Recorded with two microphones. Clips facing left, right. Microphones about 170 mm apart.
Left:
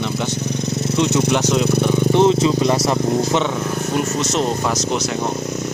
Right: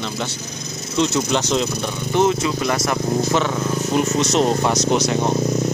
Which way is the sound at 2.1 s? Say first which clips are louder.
Left 2 dB; 30° left (ahead or behind).